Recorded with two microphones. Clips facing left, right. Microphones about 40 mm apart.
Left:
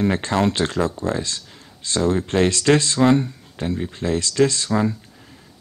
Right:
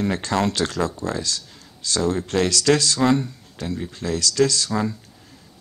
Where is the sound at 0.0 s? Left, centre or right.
Left.